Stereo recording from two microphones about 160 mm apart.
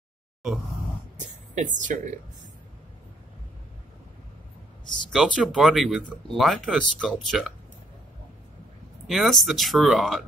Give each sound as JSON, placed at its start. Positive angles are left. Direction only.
{"t": 1.5, "sound": "speech", "side_deg": -55}
{"t": 5.1, "sound": "speech", "side_deg": -5}
{"t": 9.0, "sound": "speech", "side_deg": 0}